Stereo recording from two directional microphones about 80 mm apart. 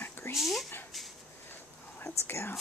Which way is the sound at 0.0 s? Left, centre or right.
Left.